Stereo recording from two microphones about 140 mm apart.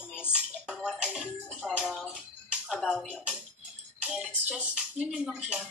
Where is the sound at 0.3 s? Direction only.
5° right (ahead or behind).